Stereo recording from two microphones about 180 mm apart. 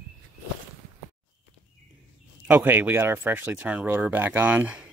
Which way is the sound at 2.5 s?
10° right (ahead or behind).